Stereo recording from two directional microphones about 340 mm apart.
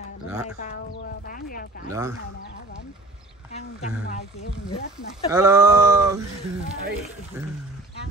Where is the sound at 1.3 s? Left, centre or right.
Left.